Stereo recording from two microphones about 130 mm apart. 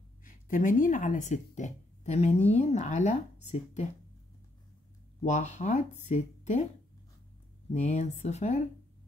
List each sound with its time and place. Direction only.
0.2 s speech: 90° left; by 3.9 s 60° left (ahead or behind)
5.2 s speech: 65° left (ahead or behind)
7.7 s speech: 65° left (ahead or behind)